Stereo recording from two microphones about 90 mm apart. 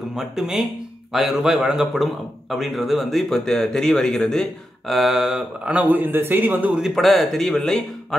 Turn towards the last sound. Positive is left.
turn(degrees=5)  # may be behind; listen again after turning